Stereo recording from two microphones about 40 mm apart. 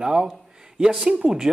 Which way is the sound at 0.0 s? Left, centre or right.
Centre.